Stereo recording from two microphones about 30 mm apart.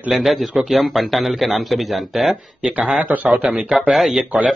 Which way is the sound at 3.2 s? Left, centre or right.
Right.